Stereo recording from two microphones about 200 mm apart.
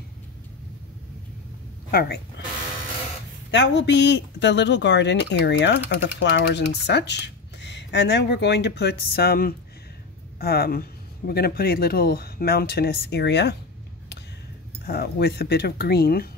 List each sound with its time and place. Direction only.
1.9 s speech: 50° left (ahead or behind)
3.5 s speech: 60° left (ahead or behind)
14.9 s speech: 55° left (ahead or behind)